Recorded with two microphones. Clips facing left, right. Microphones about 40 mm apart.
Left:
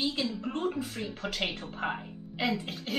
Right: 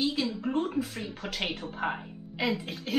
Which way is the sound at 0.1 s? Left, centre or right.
Centre.